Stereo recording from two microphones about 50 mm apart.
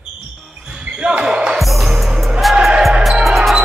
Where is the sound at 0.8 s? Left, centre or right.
Right.